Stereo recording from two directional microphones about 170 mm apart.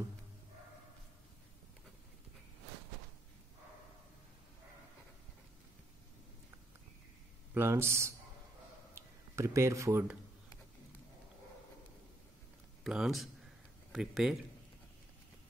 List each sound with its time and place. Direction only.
7.5 s speech: 15° right (ahead or behind)
12.8 s speech: centre (ahead or behind)